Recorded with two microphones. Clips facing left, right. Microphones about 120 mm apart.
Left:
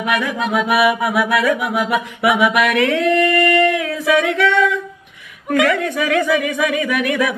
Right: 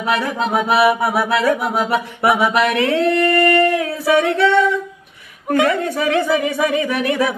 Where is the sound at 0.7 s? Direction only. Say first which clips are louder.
Right 2 dB; 30° right (ahead or behind).